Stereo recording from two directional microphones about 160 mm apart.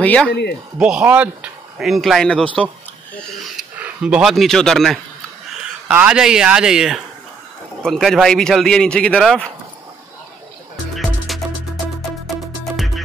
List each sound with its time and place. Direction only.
0.0 s speech: 10° left (ahead or behind)
0.3 s speech: 90° left
0.7 s speech: 5° right (ahead or behind)
11.0 s music: centre (ahead or behind)